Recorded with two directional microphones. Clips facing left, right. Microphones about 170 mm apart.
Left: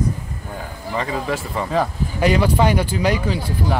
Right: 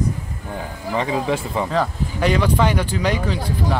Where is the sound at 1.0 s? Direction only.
15° right (ahead or behind).